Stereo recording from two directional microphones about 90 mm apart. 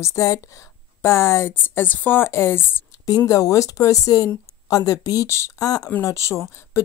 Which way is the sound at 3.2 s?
40° left (ahead or behind).